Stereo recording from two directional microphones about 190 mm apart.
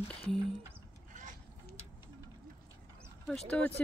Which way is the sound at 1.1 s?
40° right (ahead or behind).